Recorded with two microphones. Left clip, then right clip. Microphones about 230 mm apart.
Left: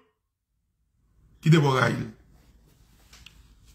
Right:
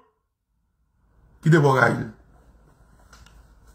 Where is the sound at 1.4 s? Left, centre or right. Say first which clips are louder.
Right 5 dB; centre.